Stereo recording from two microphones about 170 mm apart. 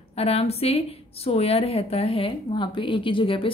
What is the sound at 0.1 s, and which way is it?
A woman's voice, 35° left (ahead or behind).